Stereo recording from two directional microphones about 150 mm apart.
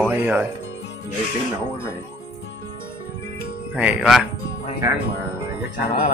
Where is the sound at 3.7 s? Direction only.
10° right (ahead or behind).